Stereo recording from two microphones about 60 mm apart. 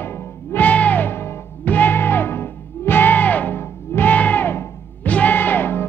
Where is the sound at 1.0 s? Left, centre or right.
Left.